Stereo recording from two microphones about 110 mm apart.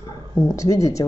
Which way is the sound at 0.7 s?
30° left (ahead or behind).